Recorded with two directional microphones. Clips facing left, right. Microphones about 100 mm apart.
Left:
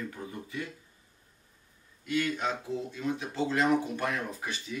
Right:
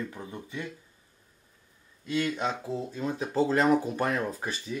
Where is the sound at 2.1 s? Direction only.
30° right (ahead or behind).